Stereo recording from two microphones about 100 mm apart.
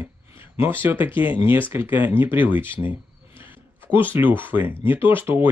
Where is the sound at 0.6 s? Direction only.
20° right (ahead or behind).